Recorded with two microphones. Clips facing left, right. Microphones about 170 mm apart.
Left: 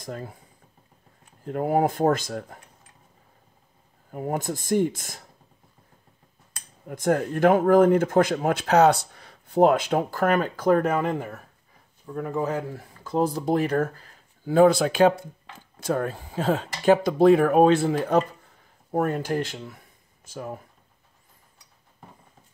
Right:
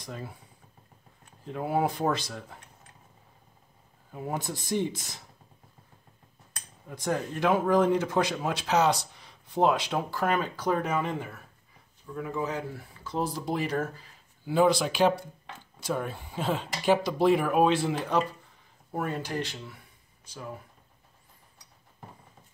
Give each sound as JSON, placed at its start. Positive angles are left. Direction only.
{"t": 0.0, "sound": "speech", "side_deg": 45}
{"t": 1.4, "sound": "speech", "side_deg": 50}
{"t": 4.1, "sound": "speech", "side_deg": 50}
{"t": 6.9, "sound": "speech", "side_deg": 50}